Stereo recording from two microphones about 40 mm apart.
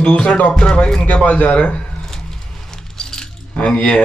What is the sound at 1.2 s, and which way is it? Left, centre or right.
Speech, left.